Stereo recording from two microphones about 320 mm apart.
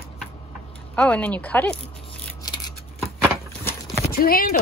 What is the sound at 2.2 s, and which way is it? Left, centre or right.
Scissors, centre.